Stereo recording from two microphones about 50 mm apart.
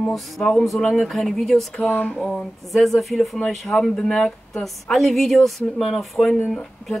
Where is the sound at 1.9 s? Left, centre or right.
Left.